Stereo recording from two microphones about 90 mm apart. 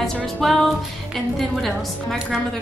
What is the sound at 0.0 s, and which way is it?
A woman's voice, centre (ahead or behind).